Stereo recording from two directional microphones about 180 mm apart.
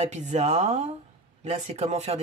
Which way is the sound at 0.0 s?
40° right (ahead or behind).